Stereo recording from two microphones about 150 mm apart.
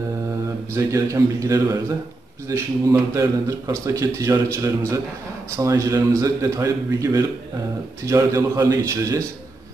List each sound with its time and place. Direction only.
0.7 s speech: 20° right (ahead or behind)